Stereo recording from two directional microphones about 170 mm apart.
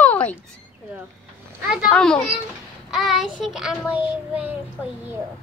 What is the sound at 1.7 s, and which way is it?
A child's voice, 5° left (ahead or behind).